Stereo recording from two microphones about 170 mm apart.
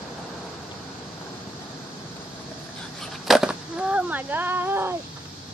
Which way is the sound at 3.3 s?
5° right (ahead or behind).